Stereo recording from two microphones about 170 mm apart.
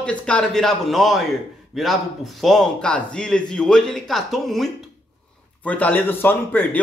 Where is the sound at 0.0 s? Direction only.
5° left (ahead or behind).